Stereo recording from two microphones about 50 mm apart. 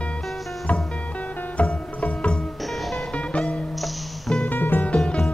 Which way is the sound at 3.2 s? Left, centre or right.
Centre.